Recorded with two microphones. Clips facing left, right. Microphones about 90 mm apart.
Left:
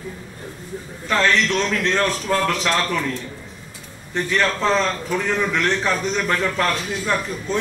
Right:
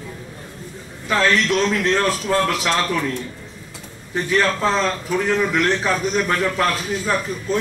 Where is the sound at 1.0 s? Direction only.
10° right (ahead or behind).